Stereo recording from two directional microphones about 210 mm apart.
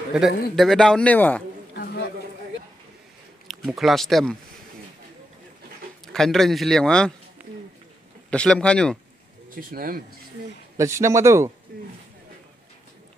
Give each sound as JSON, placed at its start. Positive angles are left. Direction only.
{"t": 0.1, "sound": "a man's voice", "side_deg": -5}
{"t": 3.4, "sound": "speech", "side_deg": 0}
{"t": 6.1, "sound": "a man's voice", "side_deg": 0}
{"t": 7.4, "sound": "a sound", "side_deg": -10}
{"t": 8.3, "sound": "a man's voice", "side_deg": 5}
{"t": 9.5, "sound": "speech", "side_deg": -45}
{"t": 10.8, "sound": "speech", "side_deg": -15}